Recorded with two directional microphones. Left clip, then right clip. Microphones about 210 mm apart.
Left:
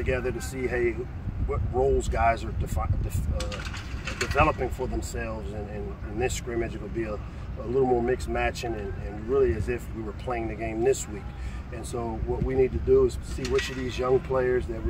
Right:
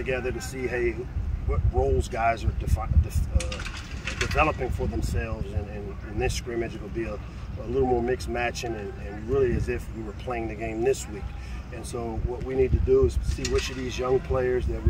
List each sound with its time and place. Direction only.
0.0 s speech: 5° left (ahead or behind)
4.0 s mechanisms: 50° left (ahead or behind)
4.4 s speech: centre (ahead or behind)
6.5 s speech: centre (ahead or behind)
13.4 s speech: 35° left (ahead or behind)
14.0 s speech: centre (ahead or behind)